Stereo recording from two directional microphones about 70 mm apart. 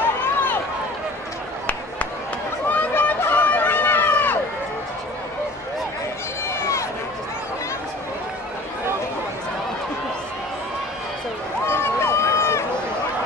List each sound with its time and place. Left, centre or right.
0.0 s run: left
2.7 s chatter: left
3.1 s run: left
6.4 s run: left
11.6 s run: left